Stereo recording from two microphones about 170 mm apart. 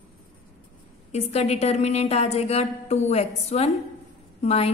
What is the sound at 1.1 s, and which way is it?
A woman's voice, 40° left (ahead or behind).